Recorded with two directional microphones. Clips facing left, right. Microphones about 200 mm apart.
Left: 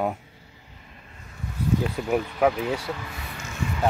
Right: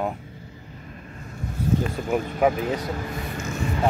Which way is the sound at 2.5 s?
45° right (ahead or behind).